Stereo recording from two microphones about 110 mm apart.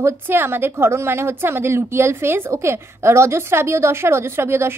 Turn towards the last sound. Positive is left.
turn(degrees=-20)  # may be behind; listen again after turning